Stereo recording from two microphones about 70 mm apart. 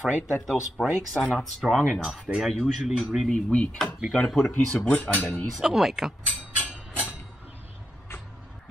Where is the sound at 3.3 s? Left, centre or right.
Centre.